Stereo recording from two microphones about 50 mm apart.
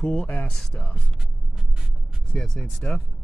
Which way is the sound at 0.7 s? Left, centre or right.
Left.